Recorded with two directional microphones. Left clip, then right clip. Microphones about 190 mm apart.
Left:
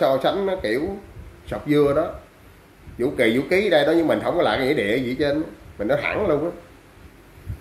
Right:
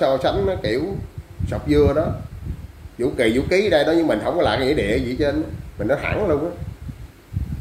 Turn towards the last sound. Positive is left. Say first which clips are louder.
# right 1 dB
turn(degrees=0)  # may be behind; listen again after turning